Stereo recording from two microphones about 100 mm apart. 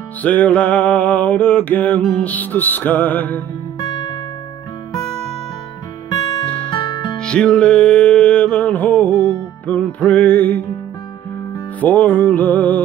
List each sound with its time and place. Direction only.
0.2 s music: 15° left (ahead or behind)
3.8 s music: 45° left (ahead or behind)
6.0 s music: 40° left (ahead or behind)
6.4 s music: 15° left (ahead or behind)
6.7 s music: 50° left (ahead or behind)
7.2 s music: 10° left (ahead or behind)
11.8 s music: 15° left (ahead or behind)